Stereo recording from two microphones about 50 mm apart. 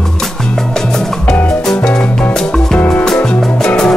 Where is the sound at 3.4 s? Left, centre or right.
Centre.